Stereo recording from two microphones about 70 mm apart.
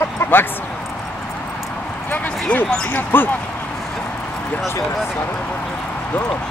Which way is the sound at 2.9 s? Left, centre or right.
Left.